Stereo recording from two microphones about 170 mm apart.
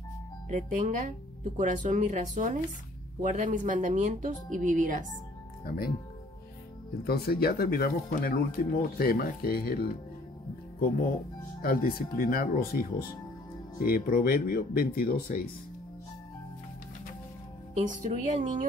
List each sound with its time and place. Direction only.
0.5 s speech: 45° right (ahead or behind)
5.7 s speech: 65° left (ahead or behind)
7.1 s speech: 65° left (ahead or behind)
11.6 s speech: 55° left (ahead or behind)
18.0 s speech: 45° right (ahead or behind)